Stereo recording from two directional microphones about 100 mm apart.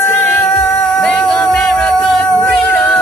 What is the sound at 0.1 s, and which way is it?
Cat, 5° left (ahead or behind).